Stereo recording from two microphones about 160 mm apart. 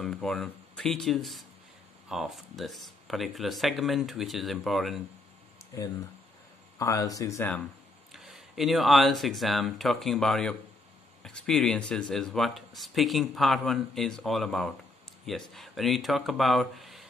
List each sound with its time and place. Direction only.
0.0 s speech: 5° left (ahead or behind)
6.8 s speech: 20° left (ahead or behind)
8.1 s speech: centre (ahead or behind)